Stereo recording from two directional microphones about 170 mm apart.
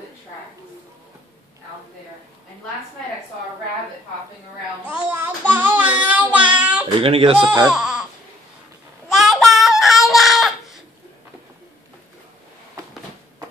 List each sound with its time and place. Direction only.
4.8 s child singing: 10° right (ahead or behind)
7.0 s speech: 35° right (ahead or behind)
7.6 s baby cry: 5° right (ahead or behind)
9.1 s a sound: centre (ahead or behind)